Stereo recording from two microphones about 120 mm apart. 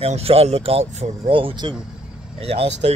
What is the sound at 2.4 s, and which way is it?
Speech, 55° right (ahead or behind).